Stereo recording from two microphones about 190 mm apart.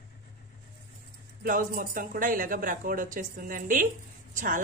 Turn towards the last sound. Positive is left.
turn(degrees=-45)  # may be behind; listen again after turning